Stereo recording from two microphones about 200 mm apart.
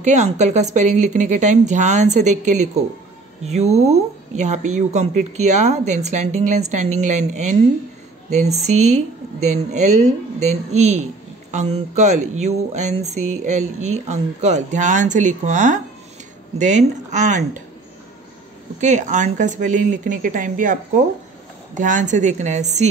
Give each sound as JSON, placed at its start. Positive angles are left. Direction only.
{"t": 0.0, "sound": "speech", "side_deg": -35}
{"t": 18.8, "sound": "speech", "side_deg": -35}